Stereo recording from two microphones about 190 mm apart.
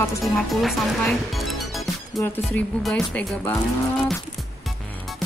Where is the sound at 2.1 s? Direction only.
10° left (ahead or behind).